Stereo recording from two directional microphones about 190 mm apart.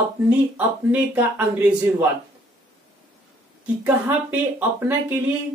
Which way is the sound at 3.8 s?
10° right (ahead or behind).